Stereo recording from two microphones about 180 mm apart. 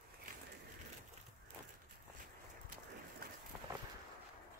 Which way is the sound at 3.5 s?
10° right (ahead or behind).